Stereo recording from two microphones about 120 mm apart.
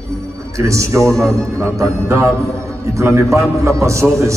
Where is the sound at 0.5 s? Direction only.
25° right (ahead or behind).